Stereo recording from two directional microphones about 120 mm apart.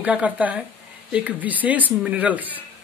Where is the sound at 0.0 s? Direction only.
10° right (ahead or behind).